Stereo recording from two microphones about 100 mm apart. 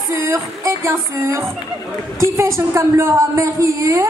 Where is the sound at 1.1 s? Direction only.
30° right (ahead or behind).